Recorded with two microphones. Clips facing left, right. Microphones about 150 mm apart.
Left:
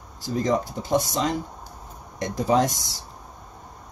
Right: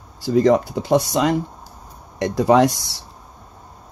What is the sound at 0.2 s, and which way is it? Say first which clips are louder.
Speech: right 8 dB; 70° right (ahead or behind).